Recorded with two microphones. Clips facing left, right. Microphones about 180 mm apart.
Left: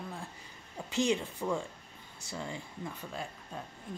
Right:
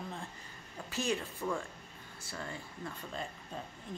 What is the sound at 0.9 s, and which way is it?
Speech, 20° left (ahead or behind).